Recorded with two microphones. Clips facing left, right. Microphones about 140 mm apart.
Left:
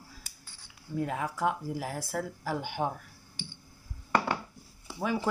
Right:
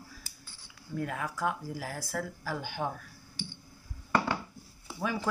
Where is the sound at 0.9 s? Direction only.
20° left (ahead or behind).